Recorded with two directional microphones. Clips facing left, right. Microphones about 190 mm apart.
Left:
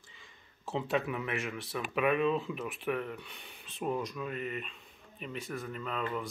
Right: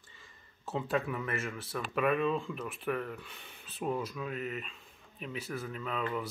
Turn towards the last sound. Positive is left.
turn(degrees=0)  # may be behind; listen again after turning